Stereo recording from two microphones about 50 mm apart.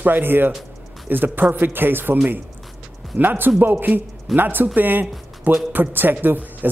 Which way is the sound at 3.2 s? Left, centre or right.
Right.